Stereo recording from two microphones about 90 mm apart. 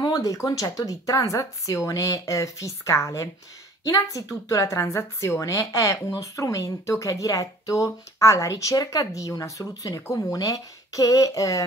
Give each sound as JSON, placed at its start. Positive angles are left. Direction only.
{"t": 0.0, "sound": "a woman's voice", "side_deg": 40}